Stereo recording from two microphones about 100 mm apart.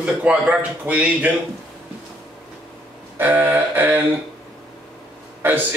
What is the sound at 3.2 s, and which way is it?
Speech, 20° right (ahead or behind).